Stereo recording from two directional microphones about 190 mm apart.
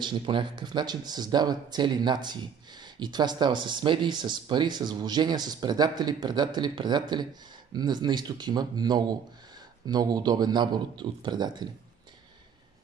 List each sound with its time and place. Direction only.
0.0 s speech: 25° right (ahead or behind)